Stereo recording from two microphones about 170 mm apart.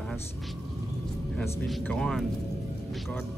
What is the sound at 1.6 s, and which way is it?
Speech, 5° left (ahead or behind).